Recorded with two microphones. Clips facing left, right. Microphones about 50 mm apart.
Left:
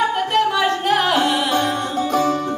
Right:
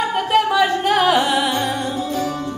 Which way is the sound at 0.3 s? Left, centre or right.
Centre.